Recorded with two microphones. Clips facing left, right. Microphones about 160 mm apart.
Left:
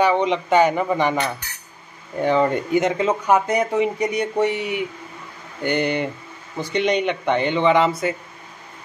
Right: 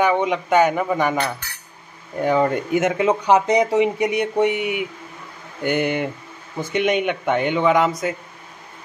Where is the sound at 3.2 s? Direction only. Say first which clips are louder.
Right 3 dB; 20° right (ahead or behind).